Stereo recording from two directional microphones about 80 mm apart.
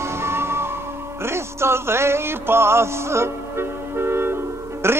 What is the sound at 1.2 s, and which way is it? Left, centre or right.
Music, right.